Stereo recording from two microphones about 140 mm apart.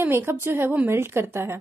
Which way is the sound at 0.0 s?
15° right (ahead or behind).